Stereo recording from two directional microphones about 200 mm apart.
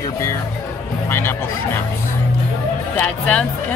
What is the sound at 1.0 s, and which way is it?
Speech, 10° left (ahead or behind).